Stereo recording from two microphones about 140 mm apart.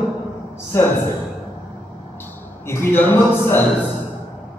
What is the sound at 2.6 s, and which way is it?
Speech, 15° left (ahead or behind).